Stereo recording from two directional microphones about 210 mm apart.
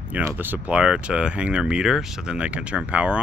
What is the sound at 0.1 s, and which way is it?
Speech, 10° right (ahead or behind).